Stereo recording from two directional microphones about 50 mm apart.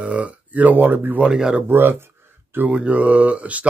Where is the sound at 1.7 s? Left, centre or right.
Right.